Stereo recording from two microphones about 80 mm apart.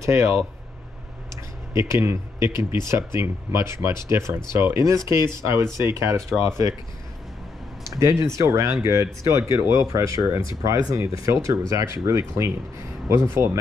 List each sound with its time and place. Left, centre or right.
0.0 s speech: right
8.0 s speech: right